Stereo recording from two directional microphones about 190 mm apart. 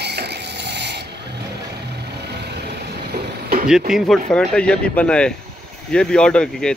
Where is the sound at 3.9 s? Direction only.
Centre (ahead or behind).